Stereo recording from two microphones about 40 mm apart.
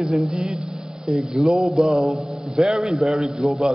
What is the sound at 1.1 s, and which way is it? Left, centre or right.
Music, centre.